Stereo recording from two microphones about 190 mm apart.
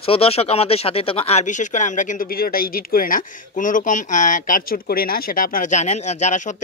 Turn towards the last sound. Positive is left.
turn(degrees=40)  # may be behind; listen again after turning